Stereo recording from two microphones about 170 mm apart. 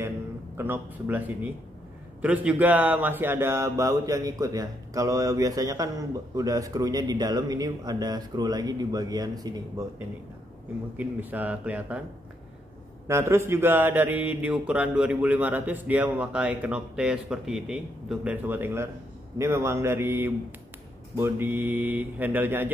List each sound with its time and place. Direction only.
0.6 s mantra: 15° right (ahead or behind)
2.2 s speech: 10° right (ahead or behind)
11.0 s mantra: 10° right (ahead or behind)
13.1 s mantra: 15° right (ahead or behind)